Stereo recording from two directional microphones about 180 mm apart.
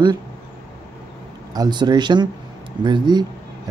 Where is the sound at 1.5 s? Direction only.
20° right (ahead or behind).